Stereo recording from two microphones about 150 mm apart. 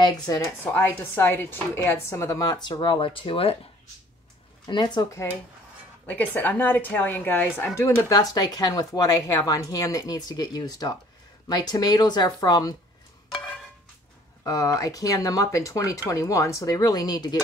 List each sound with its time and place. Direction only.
0.0 s speech: 25° left (ahead or behind)
0.7 s speech: 15° left (ahead or behind); by 3.5 s 40° left (ahead or behind)
4.6 s speech: 30° left (ahead or behind)
6.0 s a woman's voice: 10° left (ahead or behind); by 12.7 s 25° left (ahead or behind)
14.4 s speech: 25° left (ahead or behind)